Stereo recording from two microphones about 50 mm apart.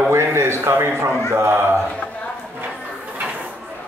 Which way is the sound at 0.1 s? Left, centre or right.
Right.